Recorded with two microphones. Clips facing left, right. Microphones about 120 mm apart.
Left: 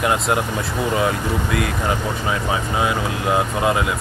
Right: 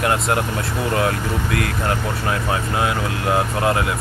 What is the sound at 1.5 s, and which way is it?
Speech, 55° right (ahead or behind).